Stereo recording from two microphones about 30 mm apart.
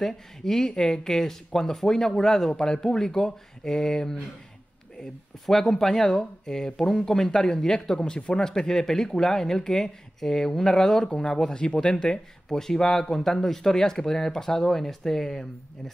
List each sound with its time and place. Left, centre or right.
0.0 s speech: centre
1.0 s speech: centre
5.5 s speech: centre
11.1 s speech: left; by 15.4 s centre